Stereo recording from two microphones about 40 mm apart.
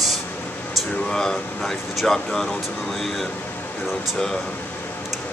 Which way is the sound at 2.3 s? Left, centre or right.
Centre.